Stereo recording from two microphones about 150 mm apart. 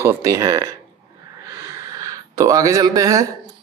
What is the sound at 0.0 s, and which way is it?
Speech, 20° right (ahead or behind).